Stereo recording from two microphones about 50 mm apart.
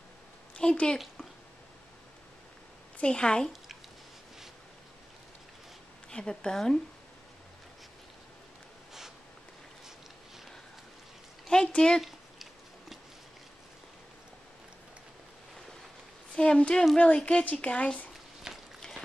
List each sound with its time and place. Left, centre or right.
0.6 s a woman's voice: centre
3.0 s speech: centre
6.0 s speech: centre
11.4 s speech: centre
16.3 s speech: centre
18.5 s a sound: centre